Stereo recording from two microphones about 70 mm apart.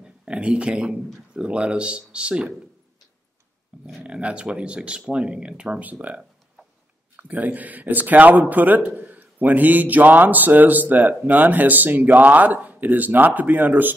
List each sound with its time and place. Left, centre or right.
0.0 s speech: centre
4.0 s a man's voice: centre